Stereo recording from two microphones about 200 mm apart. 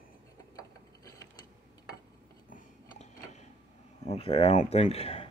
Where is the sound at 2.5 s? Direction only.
35° left (ahead or behind).